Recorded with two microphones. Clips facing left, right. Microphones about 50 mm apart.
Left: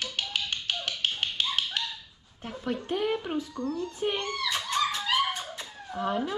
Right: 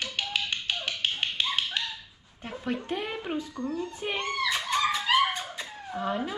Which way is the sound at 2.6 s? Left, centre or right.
Right.